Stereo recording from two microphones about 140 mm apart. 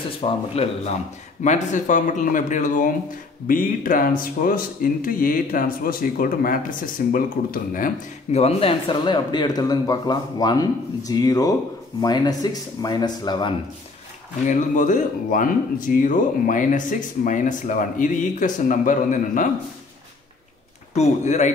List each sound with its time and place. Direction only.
0.2 s speech: 45° left (ahead or behind)
1.4 s speech: 60° left (ahead or behind)
3.4 s speech: 75° left (ahead or behind)
8.3 s speech: 45° left (ahead or behind)
14.5 s speech: 65° left (ahead or behind)
20.9 s speech: 55° left (ahead or behind)